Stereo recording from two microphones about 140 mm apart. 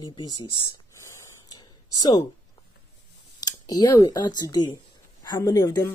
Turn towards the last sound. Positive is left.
turn(degrees=30)  # may be behind; listen again after turning